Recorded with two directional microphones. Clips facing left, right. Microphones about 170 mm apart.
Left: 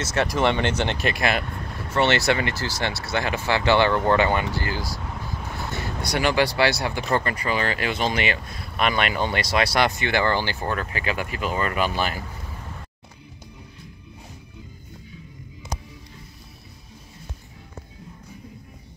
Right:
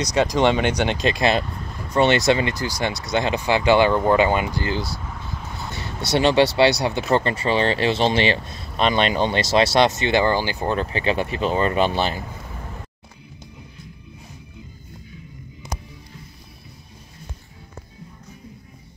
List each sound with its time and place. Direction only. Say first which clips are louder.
0.0 s speech: right 4 dB; 15° right (ahead or behind)